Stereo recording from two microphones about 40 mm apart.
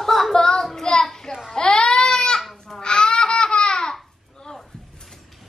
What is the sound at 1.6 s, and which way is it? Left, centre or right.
Baby cry, centre.